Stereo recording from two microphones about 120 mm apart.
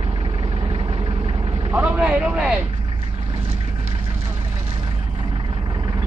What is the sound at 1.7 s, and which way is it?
Vehicle, 10° right (ahead or behind).